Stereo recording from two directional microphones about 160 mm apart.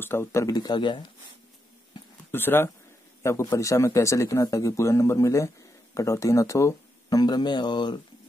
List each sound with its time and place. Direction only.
0.0 s speech: 15° left (ahead or behind)
2.3 s speech: 15° left (ahead or behind); by 8.0 s 30° left (ahead or behind)